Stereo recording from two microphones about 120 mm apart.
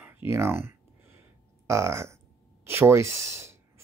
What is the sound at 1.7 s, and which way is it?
Speech, 25° right (ahead or behind).